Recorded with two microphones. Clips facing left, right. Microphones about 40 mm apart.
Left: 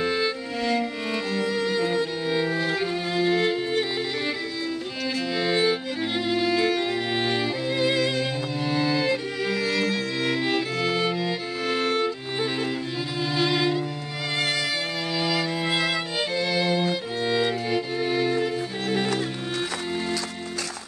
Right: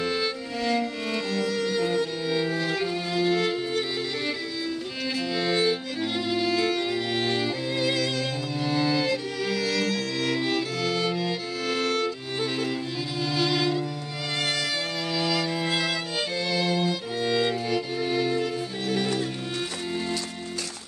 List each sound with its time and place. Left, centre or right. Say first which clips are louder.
0.0 s music: left 2 dB; left
0.7 s music: left 1 dB; centre
1.3 s violin: left 2 dB; left
5.3 s music: left 2 dB; centre
6.2 s violin: left 2 dB; centre
9.1 s music: left 2 dB; centre
13.4 s music: left 2 dB; left